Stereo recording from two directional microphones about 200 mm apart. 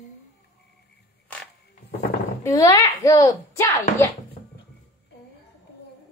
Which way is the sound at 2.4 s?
15° left (ahead or behind).